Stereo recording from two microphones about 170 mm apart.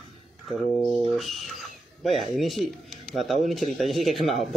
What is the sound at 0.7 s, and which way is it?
Speech, centre (ahead or behind).